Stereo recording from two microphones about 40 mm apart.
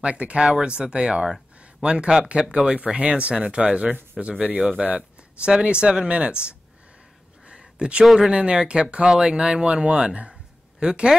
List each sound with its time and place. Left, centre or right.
0.0 s speech: right
0.4 s speech: centre
7.4 s a sound: right
8.0 s speech: centre
8.3 s speech: right